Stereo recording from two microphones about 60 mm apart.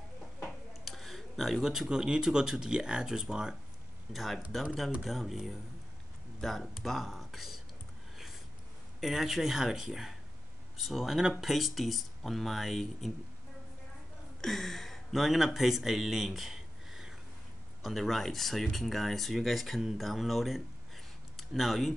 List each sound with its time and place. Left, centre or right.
0.8 s speech: centre
4.1 s speech: centre
9.0 s speech: centre
14.4 s speech: centre